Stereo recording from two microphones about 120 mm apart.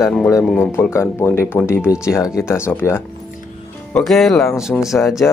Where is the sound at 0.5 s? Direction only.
20° left (ahead or behind).